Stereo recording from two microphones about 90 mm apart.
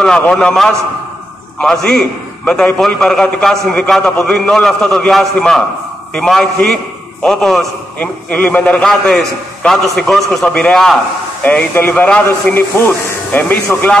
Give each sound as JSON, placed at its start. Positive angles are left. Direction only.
{"t": 0.2, "sound": "a man's voice", "side_deg": 15}
{"t": 8.0, "sound": "a man's voice", "side_deg": 15}
{"t": 11.4, "sound": "speech", "side_deg": 20}